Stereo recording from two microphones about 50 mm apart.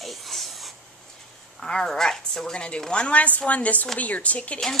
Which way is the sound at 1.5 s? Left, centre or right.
Centre.